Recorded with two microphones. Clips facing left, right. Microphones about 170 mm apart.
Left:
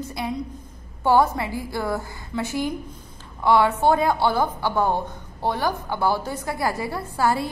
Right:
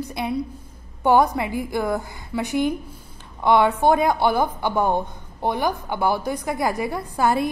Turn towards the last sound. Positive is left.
turn(degrees=-20)  # may be behind; listen again after turning